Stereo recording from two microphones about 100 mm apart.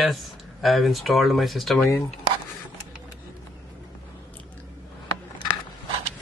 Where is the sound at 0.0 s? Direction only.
Centre (ahead or behind).